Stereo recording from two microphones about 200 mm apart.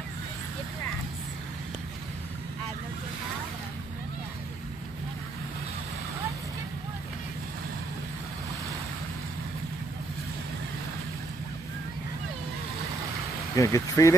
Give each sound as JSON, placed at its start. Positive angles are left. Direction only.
{"t": 13.6, "sound": "speech", "side_deg": 15}